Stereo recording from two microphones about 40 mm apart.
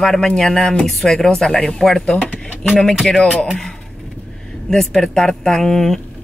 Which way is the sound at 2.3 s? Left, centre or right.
Left.